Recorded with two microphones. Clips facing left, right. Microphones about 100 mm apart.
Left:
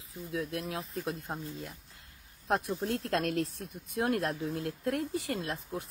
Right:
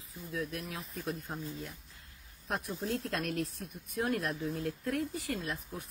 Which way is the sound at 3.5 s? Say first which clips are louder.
Left 2 dB; 30° left (ahead or behind).